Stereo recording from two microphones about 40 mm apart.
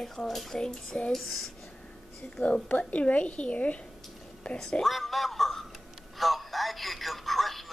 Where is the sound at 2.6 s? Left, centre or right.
Left.